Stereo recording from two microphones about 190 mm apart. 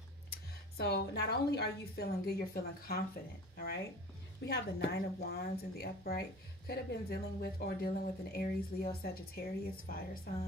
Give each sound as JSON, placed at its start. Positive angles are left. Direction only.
{"t": 0.3, "sound": "speech", "side_deg": 60}